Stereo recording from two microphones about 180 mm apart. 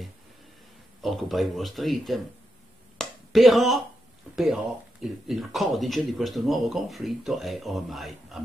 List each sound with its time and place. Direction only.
1.0 s speech: centre (ahead or behind)
3.0 s a sound: centre (ahead or behind)
5.0 s speech: centre (ahead or behind)